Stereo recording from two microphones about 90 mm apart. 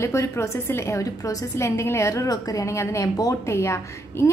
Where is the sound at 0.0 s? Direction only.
35° left (ahead or behind).